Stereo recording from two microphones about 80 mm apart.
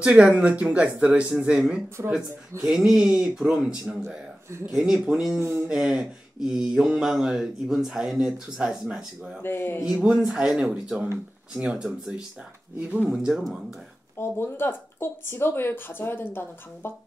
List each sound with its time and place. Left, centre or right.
0.0 s speech: centre
2.0 s speech: right
2.6 s speech: centre
9.4 s speech: left
9.9 s speech: centre
14.1 s speech: left